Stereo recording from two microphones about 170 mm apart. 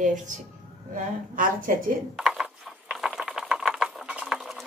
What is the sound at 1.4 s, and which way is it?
Speech, 55° right (ahead or behind).